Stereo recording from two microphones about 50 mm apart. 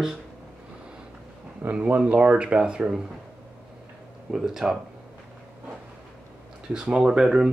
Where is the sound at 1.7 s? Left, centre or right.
Right.